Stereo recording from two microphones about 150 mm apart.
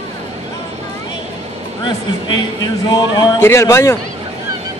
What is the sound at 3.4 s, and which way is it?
Speech, 15° left (ahead or behind).